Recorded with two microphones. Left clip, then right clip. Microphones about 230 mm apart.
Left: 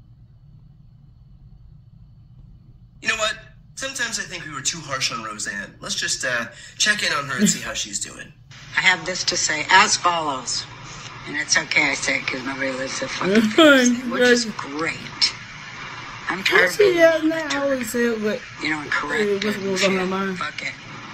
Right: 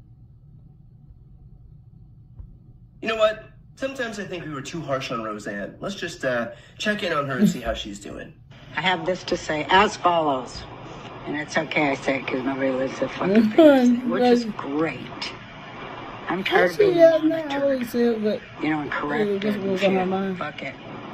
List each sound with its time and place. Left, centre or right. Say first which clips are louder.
3.0 s a man's voice: right 2 dB; centre